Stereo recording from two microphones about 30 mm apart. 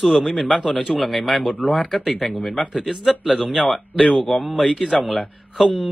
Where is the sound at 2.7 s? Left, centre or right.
Centre.